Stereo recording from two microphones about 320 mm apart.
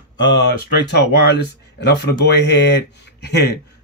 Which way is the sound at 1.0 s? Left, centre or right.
Left.